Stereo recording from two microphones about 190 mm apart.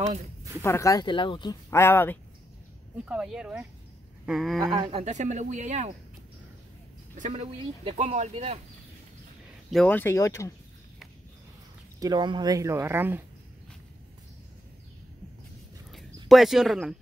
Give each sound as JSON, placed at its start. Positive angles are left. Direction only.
{"t": 0.6, "sound": "speech", "side_deg": 15}
{"t": 3.1, "sound": "speech", "side_deg": -5}
{"t": 4.6, "sound": "speech", "side_deg": -30}
{"t": 7.2, "sound": "speech", "side_deg": -35}
{"t": 9.7, "sound": "speech", "side_deg": 5}
{"t": 12.0, "sound": "speech", "side_deg": -25}
{"t": 16.3, "sound": "speech", "side_deg": 0}